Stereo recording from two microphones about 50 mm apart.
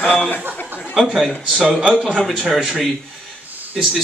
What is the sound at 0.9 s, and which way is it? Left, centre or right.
A man's voice, centre.